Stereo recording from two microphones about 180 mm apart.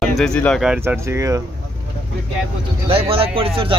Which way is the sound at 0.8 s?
15° right (ahead or behind).